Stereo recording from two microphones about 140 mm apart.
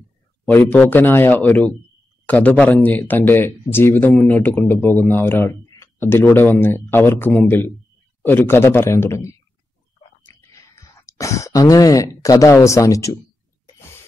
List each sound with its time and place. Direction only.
0.5 s speech: 15° left (ahead or behind)